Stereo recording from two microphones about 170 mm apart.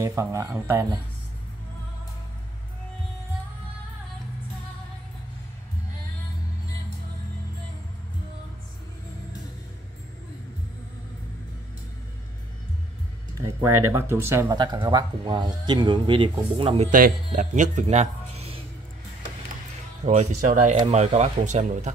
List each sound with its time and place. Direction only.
0.0 s speech: 15° right (ahead or behind)
13.4 s speech: 15° right (ahead or behind)
14.6 s a man's voice: 25° right (ahead or behind)
16.9 s speech: 50° right (ahead or behind)
20.1 s speech: 45° right (ahead or behind)
20.8 s speech: 35° right (ahead or behind)